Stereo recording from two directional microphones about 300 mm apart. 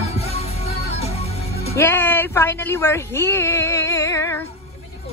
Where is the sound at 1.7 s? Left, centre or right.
Centre.